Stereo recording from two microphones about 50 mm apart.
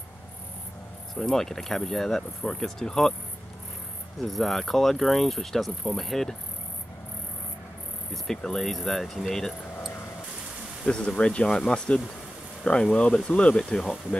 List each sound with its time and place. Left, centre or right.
1.1 s speech: centre
4.2 s speech: centre
8.1 s speech: centre
10.9 s speech: left
13.6 s speech: centre